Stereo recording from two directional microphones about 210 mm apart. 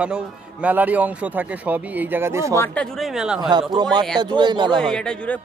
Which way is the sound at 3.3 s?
20° right (ahead or behind).